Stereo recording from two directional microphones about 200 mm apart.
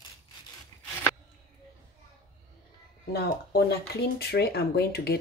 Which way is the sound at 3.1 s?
55° left (ahead or behind).